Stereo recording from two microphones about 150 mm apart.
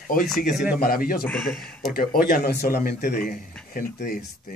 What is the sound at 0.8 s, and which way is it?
Speech, 75° left (ahead or behind).